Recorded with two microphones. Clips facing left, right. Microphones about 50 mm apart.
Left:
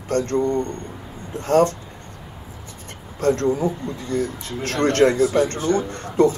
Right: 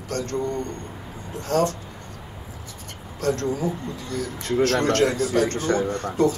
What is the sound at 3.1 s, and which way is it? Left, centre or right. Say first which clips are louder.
Speech: left 5 dB; left.